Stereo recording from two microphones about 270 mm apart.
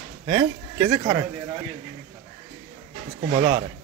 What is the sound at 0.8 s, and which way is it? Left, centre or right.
Speech, centre.